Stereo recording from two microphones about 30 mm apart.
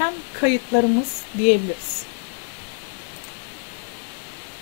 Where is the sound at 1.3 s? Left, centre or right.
Right.